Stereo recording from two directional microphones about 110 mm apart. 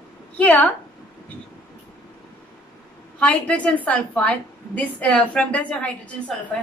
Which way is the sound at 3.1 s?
10° left (ahead or behind).